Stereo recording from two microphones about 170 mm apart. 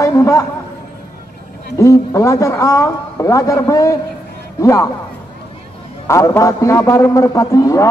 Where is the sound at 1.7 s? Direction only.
15° left (ahead or behind).